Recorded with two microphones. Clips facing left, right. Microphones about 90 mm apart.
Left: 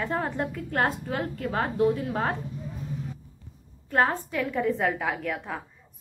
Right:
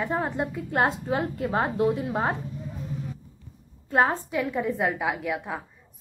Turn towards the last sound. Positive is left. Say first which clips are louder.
# right 2 dB
turn(degrees=-10)  # may be behind; listen again after turning